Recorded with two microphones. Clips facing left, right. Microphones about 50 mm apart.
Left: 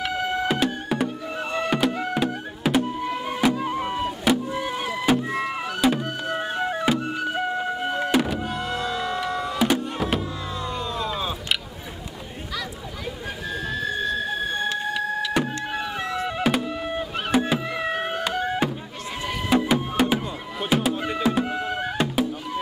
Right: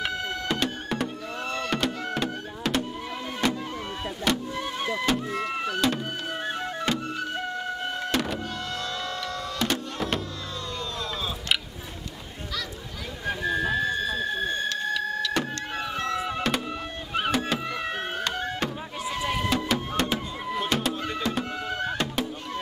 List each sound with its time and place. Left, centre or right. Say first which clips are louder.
0.1 s music: left 5 dB; centre
13.5 s a sound: right 2 dB; centre
14.7 s vehicle: left 2 dB; centre
16.3 s music: left 4 dB; centre